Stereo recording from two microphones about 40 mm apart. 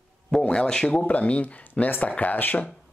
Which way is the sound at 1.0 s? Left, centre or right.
Left.